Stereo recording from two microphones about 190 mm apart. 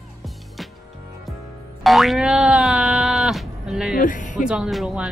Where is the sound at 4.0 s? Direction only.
45° left (ahead or behind).